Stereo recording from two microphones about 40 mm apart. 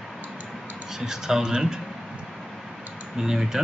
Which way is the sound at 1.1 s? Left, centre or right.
Centre.